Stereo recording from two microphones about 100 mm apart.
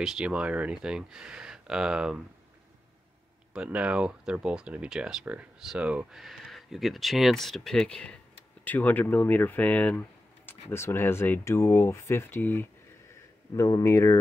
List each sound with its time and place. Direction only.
0.0 s speech: 5° right (ahead or behind)
3.5 s speech: 10° right (ahead or behind); by 12.6 s 20° left (ahead or behind)
13.6 s speech: 35° left (ahead or behind)